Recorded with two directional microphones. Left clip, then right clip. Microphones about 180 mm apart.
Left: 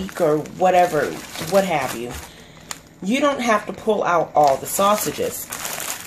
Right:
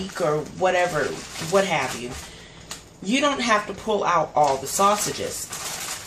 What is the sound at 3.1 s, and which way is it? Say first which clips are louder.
Speech: left 2 dB; 50° left (ahead or behind).